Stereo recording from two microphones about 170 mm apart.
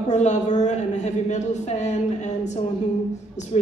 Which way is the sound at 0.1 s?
45° left (ahead or behind).